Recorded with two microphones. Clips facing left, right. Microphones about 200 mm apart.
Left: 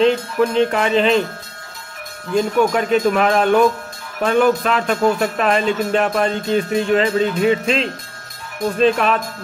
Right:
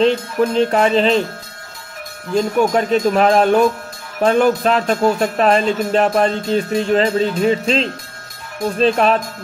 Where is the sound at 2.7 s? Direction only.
35° right (ahead or behind).